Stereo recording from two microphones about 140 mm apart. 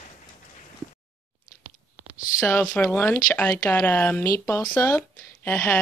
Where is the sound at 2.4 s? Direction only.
10° left (ahead or behind).